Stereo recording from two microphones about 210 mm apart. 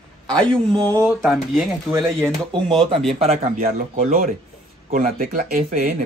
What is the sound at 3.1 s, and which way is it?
Speech, 30° right (ahead or behind).